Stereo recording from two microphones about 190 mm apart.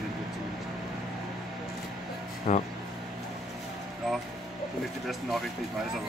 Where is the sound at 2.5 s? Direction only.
40° left (ahead or behind).